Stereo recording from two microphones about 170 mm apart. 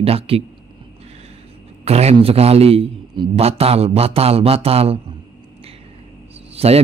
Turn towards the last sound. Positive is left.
turn(degrees=-35)  # may be behind; listen again after turning